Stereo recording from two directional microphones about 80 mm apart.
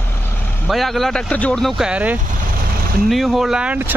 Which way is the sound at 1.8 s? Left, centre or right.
Centre.